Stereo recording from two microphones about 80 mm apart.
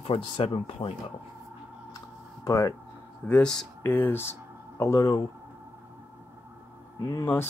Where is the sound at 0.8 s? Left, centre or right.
Left.